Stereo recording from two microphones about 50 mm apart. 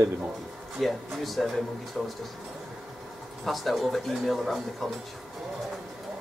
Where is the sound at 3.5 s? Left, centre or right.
Centre.